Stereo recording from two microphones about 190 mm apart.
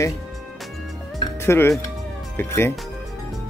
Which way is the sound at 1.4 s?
15° left (ahead or behind).